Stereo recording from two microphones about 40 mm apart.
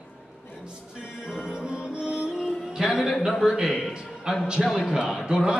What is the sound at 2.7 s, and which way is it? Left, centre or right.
Music, centre.